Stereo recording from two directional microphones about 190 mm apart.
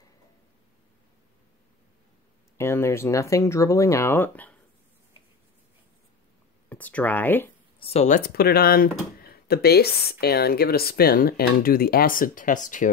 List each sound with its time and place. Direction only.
2.5 s speech: 15° left (ahead or behind)
6.7 s speech: 10° left (ahead or behind)
7.8 s speech: 35° left (ahead or behind)
8.2 s speech: 55° left (ahead or behind)